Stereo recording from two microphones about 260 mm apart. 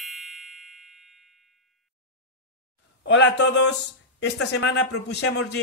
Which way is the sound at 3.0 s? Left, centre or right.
Left.